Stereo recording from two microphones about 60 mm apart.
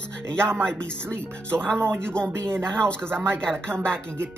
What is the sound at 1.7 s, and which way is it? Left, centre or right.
Speech, right.